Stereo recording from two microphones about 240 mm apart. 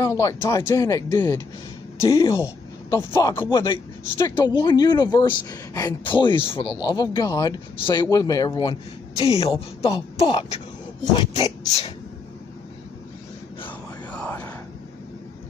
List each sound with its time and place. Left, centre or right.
0.0 s speech: centre
13.7 s whispering: centre